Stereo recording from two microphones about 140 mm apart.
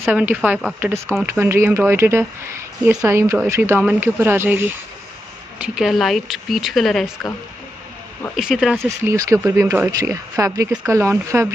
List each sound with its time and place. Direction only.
0.1 s speech: 10° right (ahead or behind)
2.8 s speech: 5° right (ahead or behind)
3.1 s speech: 20° right (ahead or behind)
5.8 s speech: centre (ahead or behind)
8.4 s speech: 5° right (ahead or behind)
8.8 s speech: 20° right (ahead or behind)